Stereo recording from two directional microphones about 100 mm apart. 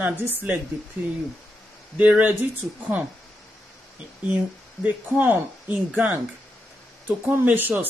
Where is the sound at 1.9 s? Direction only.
15° right (ahead or behind).